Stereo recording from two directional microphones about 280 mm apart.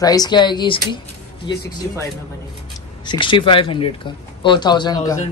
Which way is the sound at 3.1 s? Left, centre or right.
Centre.